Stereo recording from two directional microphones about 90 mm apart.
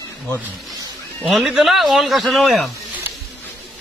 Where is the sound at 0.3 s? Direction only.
45° right (ahead or behind).